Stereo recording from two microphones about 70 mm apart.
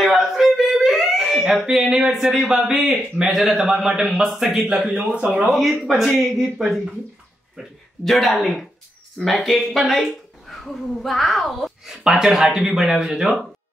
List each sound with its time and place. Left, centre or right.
0.0 s whimper: centre
1.7 s a man's voice: centre
5.5 s a man's voice: centre
8.0 s a man's voice: centre